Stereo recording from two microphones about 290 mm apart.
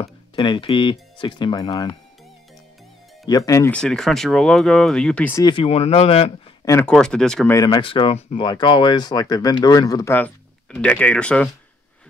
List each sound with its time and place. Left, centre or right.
0.0 s speech: centre
3.3 s speech: centre